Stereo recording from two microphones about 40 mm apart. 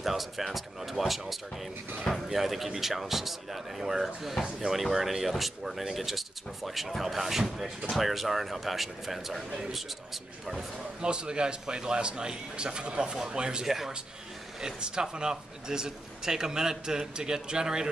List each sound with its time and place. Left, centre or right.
0.0 s speech: centre
2.2 s speech: centre
11.0 s a man's voice: right
13.7 s speech: centre
14.6 s speech: centre